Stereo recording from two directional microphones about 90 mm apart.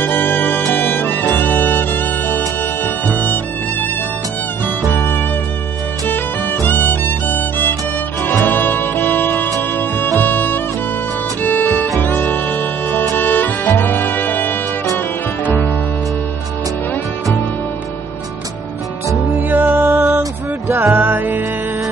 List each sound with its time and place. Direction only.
0.0 s music: 20° left (ahead or behind)
4.9 s music: 20° left (ahead or behind)
19.0 s music: 25° right (ahead or behind)